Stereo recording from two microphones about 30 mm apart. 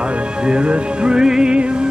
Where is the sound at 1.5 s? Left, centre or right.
Right.